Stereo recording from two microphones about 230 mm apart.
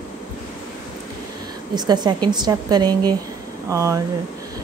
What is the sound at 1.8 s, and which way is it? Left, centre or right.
A woman's voice, centre.